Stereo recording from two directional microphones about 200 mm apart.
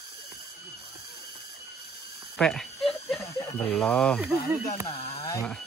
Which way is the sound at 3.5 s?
5° left (ahead or behind).